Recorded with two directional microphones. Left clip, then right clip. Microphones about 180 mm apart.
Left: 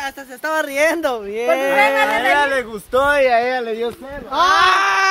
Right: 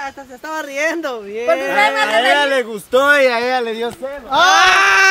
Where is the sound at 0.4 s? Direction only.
35° left (ahead or behind).